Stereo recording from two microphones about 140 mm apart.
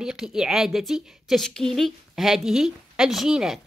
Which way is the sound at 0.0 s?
5° right (ahead or behind).